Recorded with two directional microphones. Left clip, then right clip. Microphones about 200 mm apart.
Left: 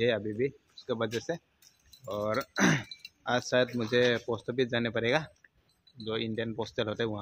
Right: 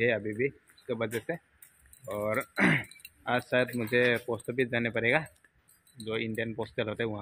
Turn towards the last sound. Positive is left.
turn(degrees=15)  # may be behind; listen again after turning